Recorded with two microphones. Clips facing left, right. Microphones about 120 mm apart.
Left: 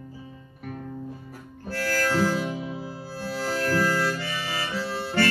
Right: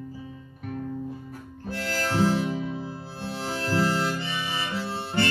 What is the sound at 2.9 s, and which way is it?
Harmonica, 25° right (ahead or behind).